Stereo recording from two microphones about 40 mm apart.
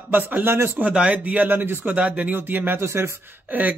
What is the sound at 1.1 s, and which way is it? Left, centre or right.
Speech, right.